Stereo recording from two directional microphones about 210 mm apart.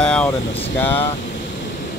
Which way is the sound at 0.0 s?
5° left (ahead or behind).